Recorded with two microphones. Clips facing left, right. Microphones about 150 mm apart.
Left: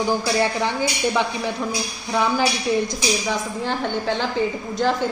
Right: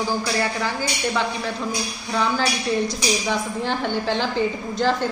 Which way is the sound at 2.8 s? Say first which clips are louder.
Even; centre (ahead or behind).